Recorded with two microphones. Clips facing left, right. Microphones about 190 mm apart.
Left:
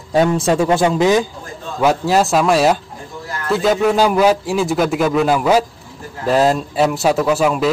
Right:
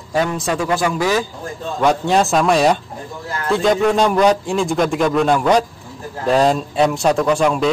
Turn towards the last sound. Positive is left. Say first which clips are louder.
# even
turn(degrees=5)  # may be behind; listen again after turning